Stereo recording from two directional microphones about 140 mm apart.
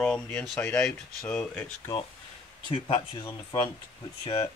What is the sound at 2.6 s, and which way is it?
Speech, 40° left (ahead or behind).